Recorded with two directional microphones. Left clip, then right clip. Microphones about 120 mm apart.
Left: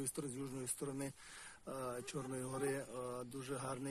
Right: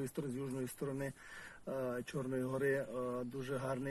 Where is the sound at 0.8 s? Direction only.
35° left (ahead or behind).